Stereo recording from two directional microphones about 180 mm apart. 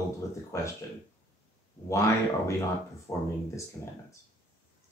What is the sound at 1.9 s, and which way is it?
Speech, 15° left (ahead or behind).